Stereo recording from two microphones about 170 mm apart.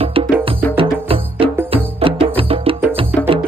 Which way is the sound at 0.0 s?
35° right (ahead or behind).